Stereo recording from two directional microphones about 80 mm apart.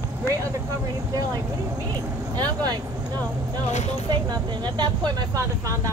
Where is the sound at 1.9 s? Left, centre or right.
Right.